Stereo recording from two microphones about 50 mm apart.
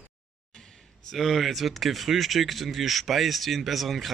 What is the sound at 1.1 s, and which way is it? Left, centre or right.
Speech, centre.